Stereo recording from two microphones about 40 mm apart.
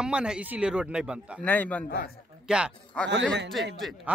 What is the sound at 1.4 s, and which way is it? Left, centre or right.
Speech, left.